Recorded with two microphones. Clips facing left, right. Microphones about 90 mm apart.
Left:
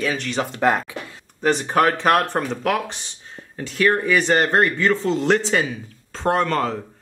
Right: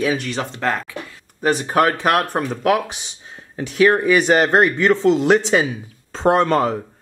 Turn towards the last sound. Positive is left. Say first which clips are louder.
# right 4 dB
turn(degrees=-15)  # may be behind; listen again after turning